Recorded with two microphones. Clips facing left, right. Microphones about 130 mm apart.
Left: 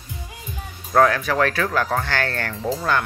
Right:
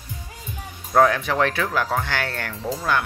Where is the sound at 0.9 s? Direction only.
15° right (ahead or behind).